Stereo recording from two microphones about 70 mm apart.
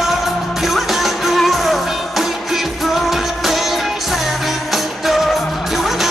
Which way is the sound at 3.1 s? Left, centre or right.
Centre.